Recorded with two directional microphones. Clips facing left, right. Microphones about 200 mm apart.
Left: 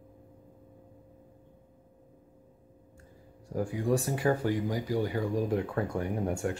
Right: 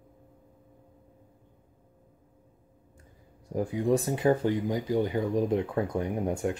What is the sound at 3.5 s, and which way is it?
Speech, 20° right (ahead or behind).